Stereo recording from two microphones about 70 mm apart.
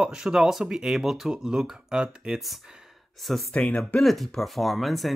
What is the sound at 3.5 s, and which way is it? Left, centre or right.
Speech, centre.